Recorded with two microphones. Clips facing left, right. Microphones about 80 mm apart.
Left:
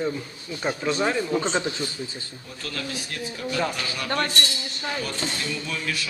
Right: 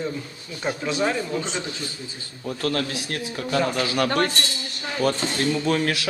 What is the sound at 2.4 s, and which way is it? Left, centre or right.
A man's voice, right.